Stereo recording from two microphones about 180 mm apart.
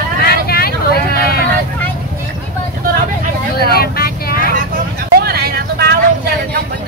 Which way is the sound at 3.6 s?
60° left (ahead or behind).